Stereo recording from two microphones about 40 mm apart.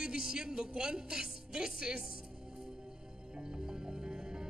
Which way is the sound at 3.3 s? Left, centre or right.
Centre.